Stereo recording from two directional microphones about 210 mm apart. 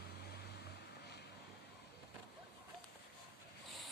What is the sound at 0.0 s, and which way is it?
Vehicle, 50° left (ahead or behind).